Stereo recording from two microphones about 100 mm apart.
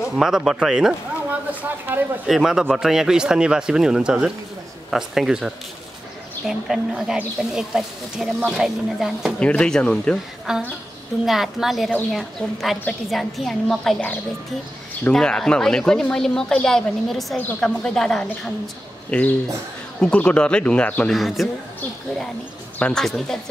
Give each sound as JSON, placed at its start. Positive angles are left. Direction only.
{"t": 0.0, "sound": "speech", "side_deg": -5}
{"t": 1.5, "sound": "speech", "side_deg": -15}
{"t": 2.2, "sound": "speech", "side_deg": -5}
{"t": 9.4, "sound": "speech", "side_deg": 10}
{"t": 10.5, "sound": "speech", "side_deg": -5}
{"t": 15.0, "sound": "speech", "side_deg": 10}
{"t": 21.1, "sound": "speech", "side_deg": 0}
{"t": 22.8, "sound": "speech", "side_deg": 10}